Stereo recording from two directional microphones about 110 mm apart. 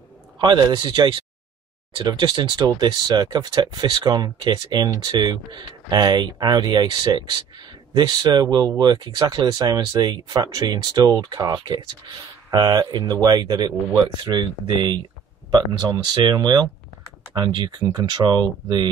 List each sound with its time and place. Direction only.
0.4 s speech: 40° right (ahead or behind)